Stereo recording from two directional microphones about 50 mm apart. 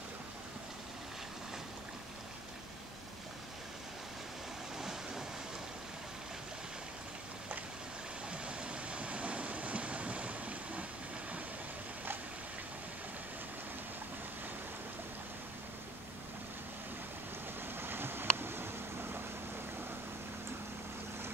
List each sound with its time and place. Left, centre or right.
4.7 s vehicle: centre
8.3 s train: right
17.7 s a sound: right